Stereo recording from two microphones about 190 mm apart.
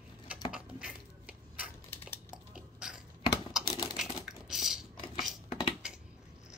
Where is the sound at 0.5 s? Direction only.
5° right (ahead or behind).